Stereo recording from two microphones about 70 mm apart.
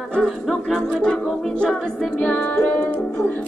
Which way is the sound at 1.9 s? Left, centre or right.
Centre.